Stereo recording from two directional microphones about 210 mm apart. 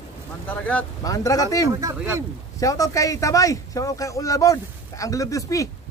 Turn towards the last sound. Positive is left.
turn(degrees=15)  # may be behind; listen again after turning